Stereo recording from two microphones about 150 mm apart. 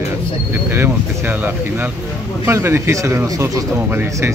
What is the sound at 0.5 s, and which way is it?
Speech, 15° right (ahead or behind).